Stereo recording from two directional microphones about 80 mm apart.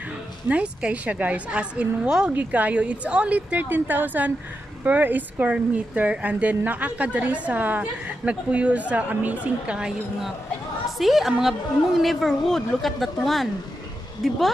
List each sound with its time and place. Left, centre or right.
0.5 s a woman's voice: centre